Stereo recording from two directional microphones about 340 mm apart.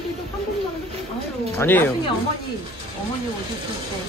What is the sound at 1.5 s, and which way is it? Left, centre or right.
Speech, centre.